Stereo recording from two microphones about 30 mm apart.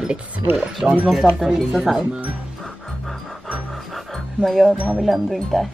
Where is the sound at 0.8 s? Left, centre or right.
Right.